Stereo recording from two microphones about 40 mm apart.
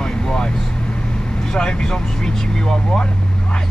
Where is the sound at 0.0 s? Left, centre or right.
Centre.